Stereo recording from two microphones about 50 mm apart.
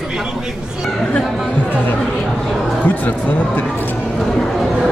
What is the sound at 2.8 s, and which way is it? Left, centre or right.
Speech, left.